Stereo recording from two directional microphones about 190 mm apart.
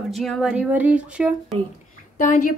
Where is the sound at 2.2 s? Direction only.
45° left (ahead or behind).